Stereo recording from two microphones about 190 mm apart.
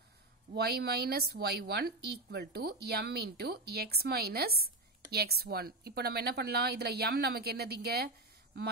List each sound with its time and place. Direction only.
0.5 s speech: 55° right (ahead or behind)